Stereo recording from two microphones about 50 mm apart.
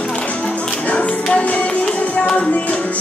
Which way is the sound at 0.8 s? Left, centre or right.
Left.